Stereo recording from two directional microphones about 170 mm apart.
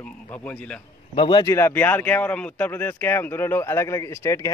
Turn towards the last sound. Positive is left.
turn(degrees=15)  # may be behind; listen again after turning